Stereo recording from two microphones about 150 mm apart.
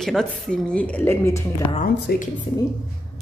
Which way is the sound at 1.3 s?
45° left (ahead or behind).